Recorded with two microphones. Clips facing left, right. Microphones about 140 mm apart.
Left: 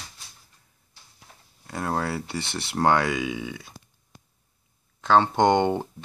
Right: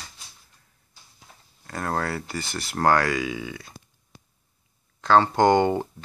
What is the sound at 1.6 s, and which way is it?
Speech, 10° left (ahead or behind).